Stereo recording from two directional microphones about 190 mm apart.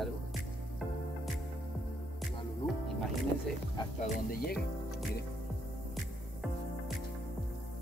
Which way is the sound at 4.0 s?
50° left (ahead or behind).